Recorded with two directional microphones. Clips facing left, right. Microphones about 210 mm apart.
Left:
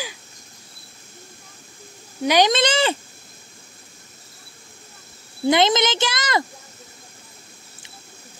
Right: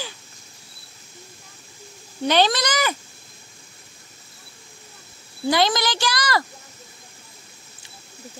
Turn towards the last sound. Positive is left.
turn(degrees=20)  # may be behind; listen again after turning